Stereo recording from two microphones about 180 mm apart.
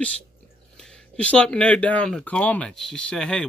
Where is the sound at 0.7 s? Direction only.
5° left (ahead or behind).